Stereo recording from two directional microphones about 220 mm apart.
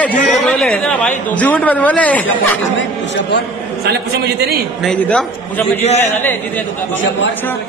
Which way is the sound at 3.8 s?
50° right (ahead or behind).